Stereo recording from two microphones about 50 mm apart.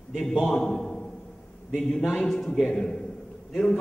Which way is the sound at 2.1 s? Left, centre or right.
Centre.